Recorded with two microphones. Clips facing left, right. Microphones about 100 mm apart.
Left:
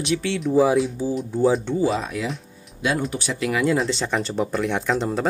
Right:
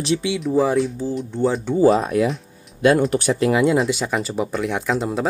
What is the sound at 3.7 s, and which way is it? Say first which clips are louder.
Speech: right 3 dB; 5° right (ahead or behind).